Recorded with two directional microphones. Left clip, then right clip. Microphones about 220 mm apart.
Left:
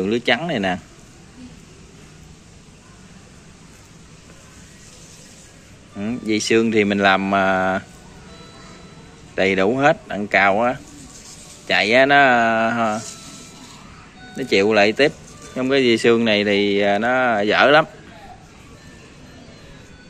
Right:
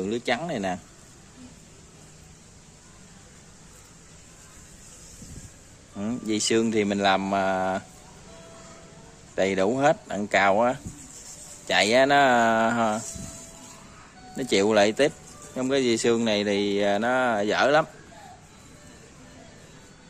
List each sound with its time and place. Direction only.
0.0 s speech: 10° right (ahead or behind)
5.9 s speech: 20° right (ahead or behind)
9.3 s speech: 15° right (ahead or behind)
14.3 s speech: 25° right (ahead or behind)